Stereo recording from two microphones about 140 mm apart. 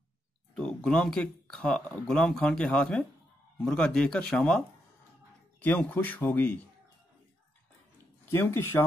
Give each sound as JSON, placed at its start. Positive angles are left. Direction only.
{"t": 0.6, "sound": "speech", "side_deg": 5}
{"t": 8.3, "sound": "speech", "side_deg": 15}